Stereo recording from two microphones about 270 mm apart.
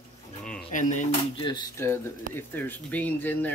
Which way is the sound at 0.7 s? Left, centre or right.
Left.